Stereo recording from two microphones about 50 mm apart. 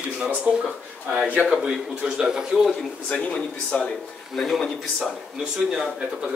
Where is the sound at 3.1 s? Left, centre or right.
Left.